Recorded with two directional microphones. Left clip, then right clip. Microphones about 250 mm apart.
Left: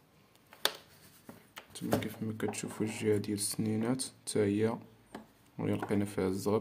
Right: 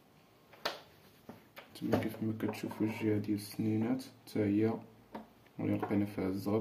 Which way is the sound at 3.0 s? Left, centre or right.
Left.